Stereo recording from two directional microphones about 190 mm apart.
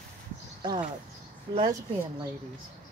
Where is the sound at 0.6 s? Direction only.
25° right (ahead or behind).